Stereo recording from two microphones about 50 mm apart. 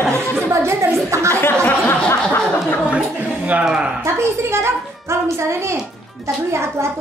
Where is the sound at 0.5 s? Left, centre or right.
Right.